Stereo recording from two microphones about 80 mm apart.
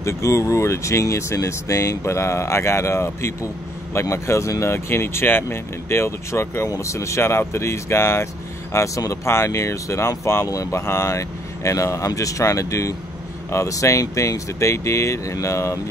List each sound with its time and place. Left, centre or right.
0.0 s speech: left
8.7 s speech: left